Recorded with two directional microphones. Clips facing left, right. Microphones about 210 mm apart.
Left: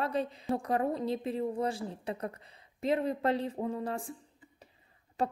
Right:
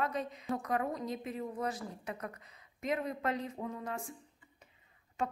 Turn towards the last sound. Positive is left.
turn(degrees=35)  # may be behind; listen again after turning